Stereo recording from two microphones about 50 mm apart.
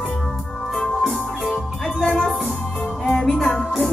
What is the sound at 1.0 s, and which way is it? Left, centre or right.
Music, centre.